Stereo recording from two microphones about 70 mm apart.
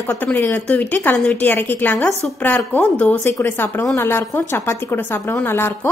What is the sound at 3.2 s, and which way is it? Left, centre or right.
A woman's voice, left.